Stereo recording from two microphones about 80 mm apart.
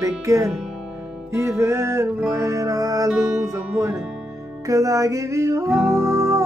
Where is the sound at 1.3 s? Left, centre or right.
Right.